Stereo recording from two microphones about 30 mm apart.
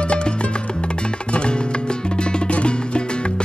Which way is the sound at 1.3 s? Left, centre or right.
Left.